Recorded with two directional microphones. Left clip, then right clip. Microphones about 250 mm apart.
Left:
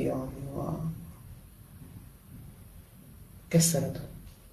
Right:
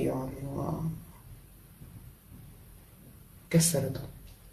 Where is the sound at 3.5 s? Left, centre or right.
Centre.